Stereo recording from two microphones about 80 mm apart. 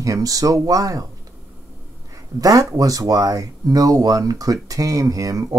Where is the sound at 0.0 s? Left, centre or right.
Right.